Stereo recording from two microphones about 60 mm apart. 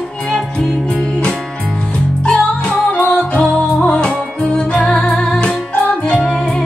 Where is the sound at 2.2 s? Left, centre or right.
Centre.